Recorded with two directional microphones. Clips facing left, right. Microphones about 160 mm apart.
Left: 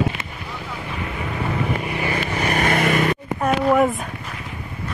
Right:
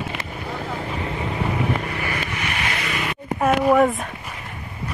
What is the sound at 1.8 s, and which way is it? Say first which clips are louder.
Vehicle: left 3 dB; 20° left (ahead or behind).